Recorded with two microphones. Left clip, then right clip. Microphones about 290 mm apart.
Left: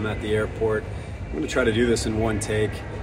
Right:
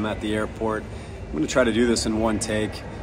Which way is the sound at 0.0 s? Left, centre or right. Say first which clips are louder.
Left 1 dB; centre.